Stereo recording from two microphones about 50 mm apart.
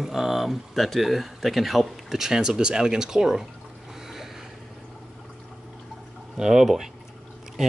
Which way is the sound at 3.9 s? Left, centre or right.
Centre.